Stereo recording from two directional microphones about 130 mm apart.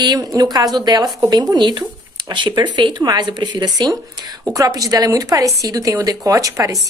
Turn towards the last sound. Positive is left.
turn(degrees=-25)  # may be behind; listen again after turning